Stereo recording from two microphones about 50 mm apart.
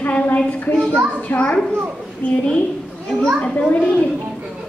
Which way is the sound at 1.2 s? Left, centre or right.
Left.